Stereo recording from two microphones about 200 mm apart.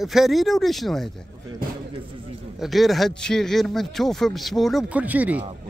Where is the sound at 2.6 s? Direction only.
Centre (ahead or behind).